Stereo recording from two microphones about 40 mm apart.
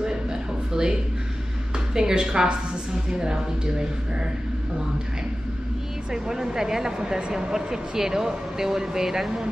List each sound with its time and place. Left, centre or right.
0.0 s a sound: centre
2.0 s a woman's voice: centre
6.1 s speech: centre